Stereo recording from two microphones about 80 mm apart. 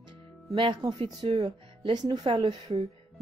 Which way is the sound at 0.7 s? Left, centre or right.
Right.